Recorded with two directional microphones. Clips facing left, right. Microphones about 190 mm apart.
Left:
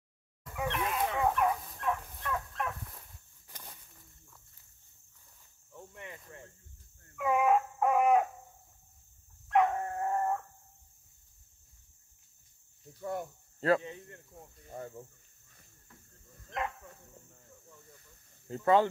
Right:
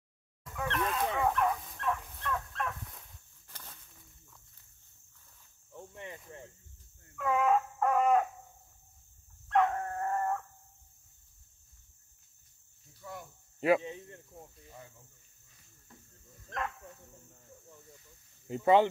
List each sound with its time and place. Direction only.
0.6 s dog: 10° left (ahead or behind)
3.5 s a sound: 15° left (ahead or behind)
5.9 s cricket: 25° right (ahead or behind)
7.2 s dog: 10° left (ahead or behind)
9.5 s dog: 10° left (ahead or behind)
13.6 s cricket: 15° right (ahead or behind)
14.7 s cricket: 50° left (ahead or behind)
16.4 s dog: 20° left (ahead or behind)
18.5 s speech: 20° right (ahead or behind)